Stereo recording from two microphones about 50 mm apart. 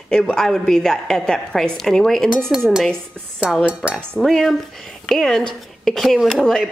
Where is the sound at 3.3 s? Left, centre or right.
Centre.